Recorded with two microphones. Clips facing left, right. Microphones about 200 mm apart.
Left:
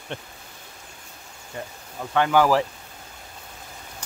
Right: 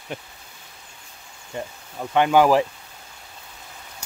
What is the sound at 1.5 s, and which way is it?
Speech, 20° right (ahead or behind).